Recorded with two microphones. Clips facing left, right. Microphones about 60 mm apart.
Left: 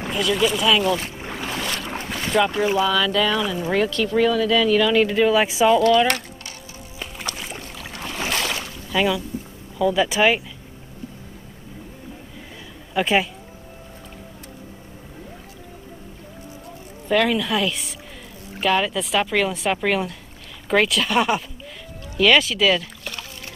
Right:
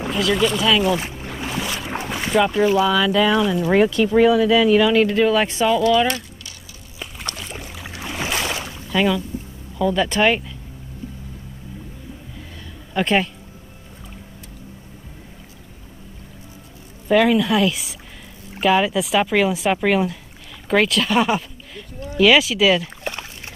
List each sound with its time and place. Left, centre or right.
0.0 s speech: centre
1.1 s boat: centre
1.4 s boat: centre
2.8 s speech: centre
5.0 s speech: centre
7.0 s rowboat: centre
7.5 s boat: centre
8.9 s speech: centre
12.9 s speech: centre
17.1 s speech: centre
23.1 s a sound: right